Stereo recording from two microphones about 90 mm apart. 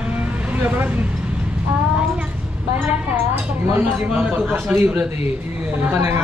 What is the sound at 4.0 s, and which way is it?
Vehicle, 15° right (ahead or behind).